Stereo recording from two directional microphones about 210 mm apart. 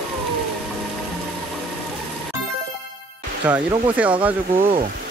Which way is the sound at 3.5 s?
5° right (ahead or behind).